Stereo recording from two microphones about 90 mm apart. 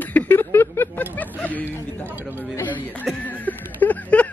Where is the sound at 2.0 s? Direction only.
20° right (ahead or behind).